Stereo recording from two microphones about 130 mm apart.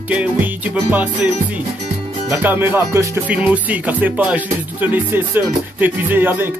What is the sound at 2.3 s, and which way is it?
Music, 15° right (ahead or behind).